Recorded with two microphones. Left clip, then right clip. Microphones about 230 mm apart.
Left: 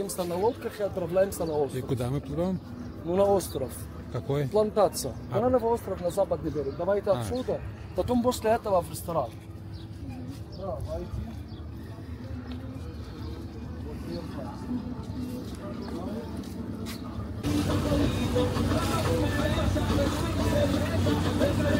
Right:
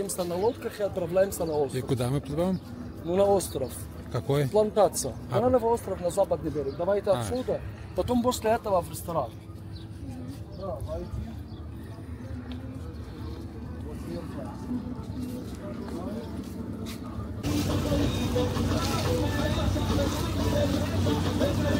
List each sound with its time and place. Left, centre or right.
0.0 s speech: centre
1.7 s speech: centre
3.6 s a man's voice: centre
4.6 s speech: centre
4.9 s speech: centre
17.5 s speech: centre